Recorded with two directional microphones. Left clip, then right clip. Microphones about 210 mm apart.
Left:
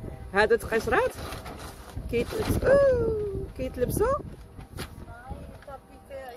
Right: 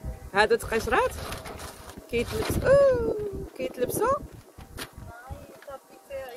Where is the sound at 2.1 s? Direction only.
Centre (ahead or behind).